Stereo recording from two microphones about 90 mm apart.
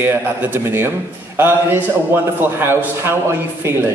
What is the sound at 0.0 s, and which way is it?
A man's voice, 20° right (ahead or behind).